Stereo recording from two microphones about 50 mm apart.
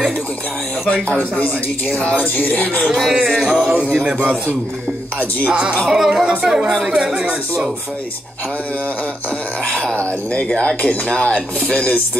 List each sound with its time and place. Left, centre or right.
2.8 s speech: centre
4.0 s a man's voice: centre
5.4 s speech: centre
9.7 s speech: centre